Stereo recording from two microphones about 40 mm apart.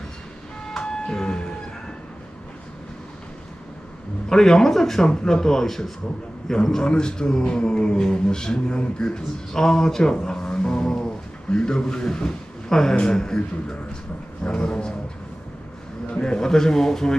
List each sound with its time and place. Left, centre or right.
0.7 s train: centre
4.3 s a man's voice: centre
16.1 s a man's voice: left